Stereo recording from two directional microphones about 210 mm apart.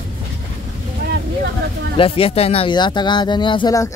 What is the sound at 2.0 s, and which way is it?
Speech, 25° left (ahead or behind).